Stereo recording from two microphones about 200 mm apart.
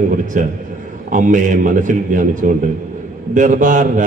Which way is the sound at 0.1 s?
40° right (ahead or behind).